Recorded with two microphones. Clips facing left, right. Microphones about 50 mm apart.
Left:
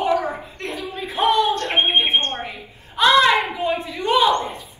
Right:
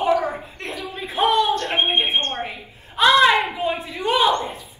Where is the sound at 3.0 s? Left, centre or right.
Centre.